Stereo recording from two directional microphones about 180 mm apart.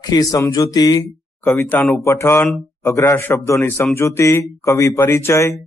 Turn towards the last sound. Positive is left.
turn(degrees=15)  # may be behind; listen again after turning